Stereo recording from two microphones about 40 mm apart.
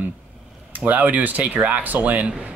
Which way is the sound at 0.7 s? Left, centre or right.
Right.